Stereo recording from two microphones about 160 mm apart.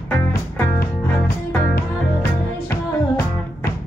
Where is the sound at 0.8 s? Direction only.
75° left (ahead or behind).